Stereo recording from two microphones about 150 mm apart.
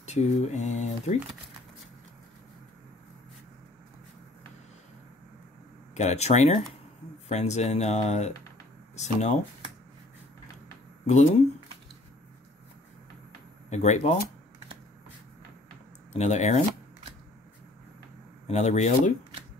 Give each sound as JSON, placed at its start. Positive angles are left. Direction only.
{"t": 0.0, "sound": "speech", "side_deg": 50}
{"t": 5.9, "sound": "speech", "side_deg": 50}
{"t": 13.7, "sound": "speech", "side_deg": 50}
{"t": 16.1, "sound": "speech", "side_deg": 50}
{"t": 18.5, "sound": "speech", "side_deg": 50}